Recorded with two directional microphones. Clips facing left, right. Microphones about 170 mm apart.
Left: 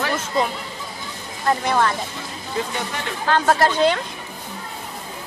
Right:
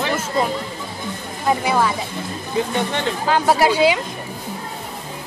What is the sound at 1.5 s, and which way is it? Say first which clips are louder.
Speech: right 1 dB; 5° right (ahead or behind).